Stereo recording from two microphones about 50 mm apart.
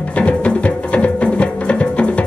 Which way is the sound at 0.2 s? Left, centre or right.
Left.